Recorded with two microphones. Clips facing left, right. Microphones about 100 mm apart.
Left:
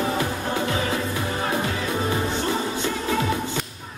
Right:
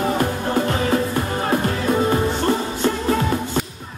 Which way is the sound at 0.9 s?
50° right (ahead or behind).